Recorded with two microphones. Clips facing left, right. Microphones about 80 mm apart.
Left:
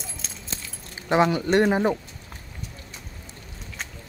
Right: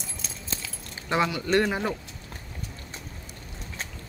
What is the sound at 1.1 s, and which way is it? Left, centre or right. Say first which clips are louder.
Speech: left 4 dB; left.